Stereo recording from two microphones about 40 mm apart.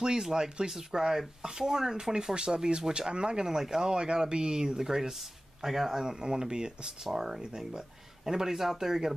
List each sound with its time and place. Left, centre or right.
0.0 s speech: centre